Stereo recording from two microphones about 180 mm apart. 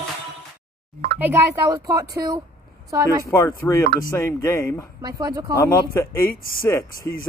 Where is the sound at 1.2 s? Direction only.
10° right (ahead or behind).